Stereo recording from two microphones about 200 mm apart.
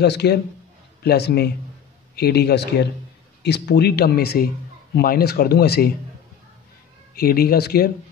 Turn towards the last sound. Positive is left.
turn(degrees=50)  # may be behind; listen again after turning